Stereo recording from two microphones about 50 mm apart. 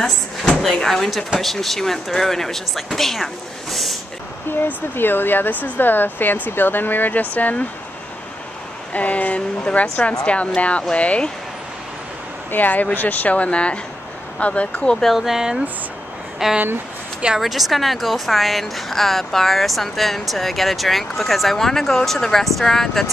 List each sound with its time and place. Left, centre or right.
0.6 s a woman's voice: centre
4.9 s speech: left
8.9 s speech: left
12.4 s speech: left
15.0 s a woman's voice: centre